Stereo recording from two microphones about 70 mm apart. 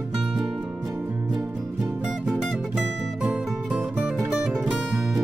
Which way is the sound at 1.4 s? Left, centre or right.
Right.